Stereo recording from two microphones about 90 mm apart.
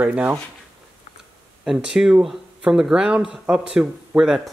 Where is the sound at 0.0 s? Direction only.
15° right (ahead or behind).